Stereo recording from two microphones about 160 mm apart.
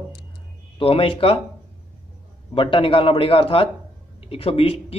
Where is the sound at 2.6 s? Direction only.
30° left (ahead or behind).